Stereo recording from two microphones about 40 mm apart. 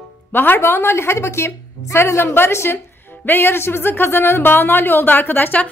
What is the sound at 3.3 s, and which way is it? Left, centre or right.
Speech, left.